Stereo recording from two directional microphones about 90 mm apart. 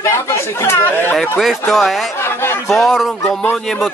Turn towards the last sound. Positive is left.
turn(degrees=0)  # may be behind; listen again after turning